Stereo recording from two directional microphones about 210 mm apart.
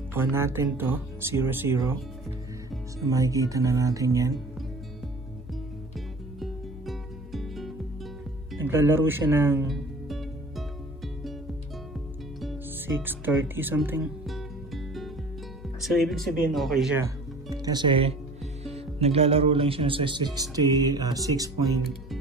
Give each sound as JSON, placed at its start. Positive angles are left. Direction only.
{"t": 0.1, "sound": "speech", "side_deg": -10}
{"t": 3.1, "sound": "speech", "side_deg": -15}
{"t": 5.9, "sound": "music", "side_deg": 0}
{"t": 8.6, "sound": "speech", "side_deg": -10}
{"t": 9.7, "sound": "music", "side_deg": 0}
{"t": 12.4, "sound": "music", "side_deg": 0}
{"t": 12.9, "sound": "speech", "side_deg": -10}
{"t": 17.5, "sound": "speech", "side_deg": -20}